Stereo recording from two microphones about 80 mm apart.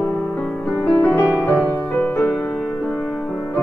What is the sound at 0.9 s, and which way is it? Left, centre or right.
Music, left.